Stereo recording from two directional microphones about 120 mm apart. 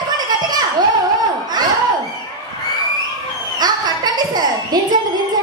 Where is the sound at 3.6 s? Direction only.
35° right (ahead or behind).